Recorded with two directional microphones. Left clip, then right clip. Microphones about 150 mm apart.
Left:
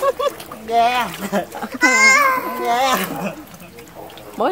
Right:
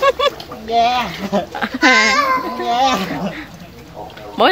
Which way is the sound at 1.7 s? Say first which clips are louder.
Even; 25° left (ahead or behind).